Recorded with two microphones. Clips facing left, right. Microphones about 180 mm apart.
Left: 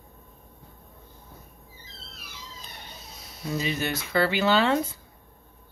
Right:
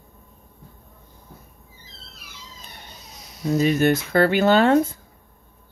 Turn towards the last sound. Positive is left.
turn(degrees=-50)  # may be behind; listen again after turning